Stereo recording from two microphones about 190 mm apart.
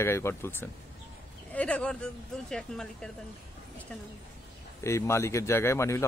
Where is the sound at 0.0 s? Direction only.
15° left (ahead or behind).